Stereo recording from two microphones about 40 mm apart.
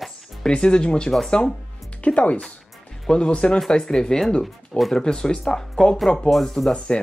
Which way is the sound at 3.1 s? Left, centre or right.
Left.